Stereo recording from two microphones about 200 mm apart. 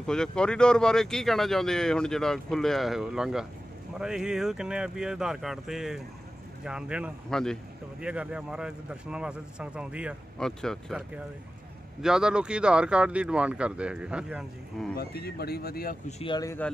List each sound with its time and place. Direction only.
0.0 s speech: 5° left (ahead or behind)
15.0 s speech: 50° left (ahead or behind)
16.1 s speech: 30° left (ahead or behind)
16.3 s speech: 10° left (ahead or behind)